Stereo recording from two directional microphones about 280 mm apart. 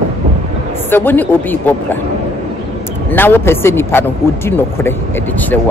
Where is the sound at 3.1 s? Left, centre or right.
Centre.